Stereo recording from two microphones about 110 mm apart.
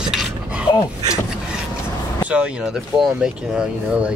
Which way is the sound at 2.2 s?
10° right (ahead or behind).